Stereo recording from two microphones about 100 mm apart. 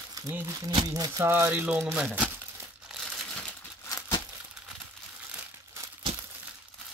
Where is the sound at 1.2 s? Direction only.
25° right (ahead or behind).